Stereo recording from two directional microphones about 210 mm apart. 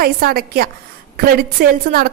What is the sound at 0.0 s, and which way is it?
A woman's voice, 45° right (ahead or behind).